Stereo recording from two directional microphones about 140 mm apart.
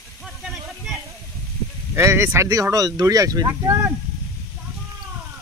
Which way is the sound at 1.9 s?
20° right (ahead or behind).